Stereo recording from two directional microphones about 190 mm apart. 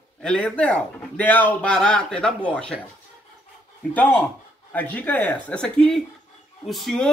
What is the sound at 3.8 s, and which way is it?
A man's voice, 5° left (ahead or behind).